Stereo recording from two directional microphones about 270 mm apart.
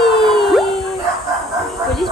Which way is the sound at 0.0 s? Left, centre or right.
Centre.